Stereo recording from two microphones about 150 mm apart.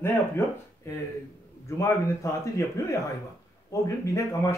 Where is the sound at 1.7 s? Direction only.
20° left (ahead or behind).